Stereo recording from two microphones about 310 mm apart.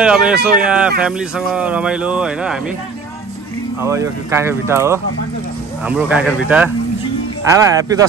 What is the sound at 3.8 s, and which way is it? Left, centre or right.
A man's voice, centre.